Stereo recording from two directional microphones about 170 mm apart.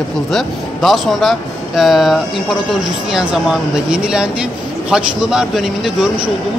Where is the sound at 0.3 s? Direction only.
Centre (ahead or behind).